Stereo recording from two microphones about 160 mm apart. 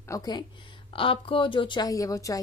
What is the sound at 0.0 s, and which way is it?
Speech, 20° left (ahead or behind).